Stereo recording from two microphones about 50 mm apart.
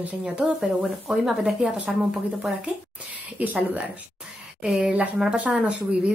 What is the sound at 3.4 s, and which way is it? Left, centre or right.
Speech, right.